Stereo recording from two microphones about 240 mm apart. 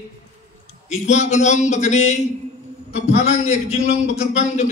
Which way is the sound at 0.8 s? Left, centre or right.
Left.